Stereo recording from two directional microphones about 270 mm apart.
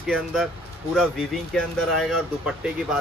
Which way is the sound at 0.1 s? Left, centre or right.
Centre.